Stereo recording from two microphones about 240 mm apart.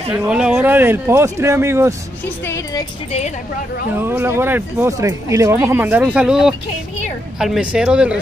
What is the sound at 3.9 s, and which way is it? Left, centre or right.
Speech, centre.